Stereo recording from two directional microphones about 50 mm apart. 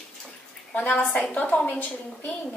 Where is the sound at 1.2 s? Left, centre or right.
Centre.